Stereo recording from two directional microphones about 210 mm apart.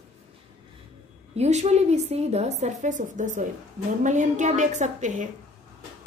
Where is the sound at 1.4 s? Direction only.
30° right (ahead or behind).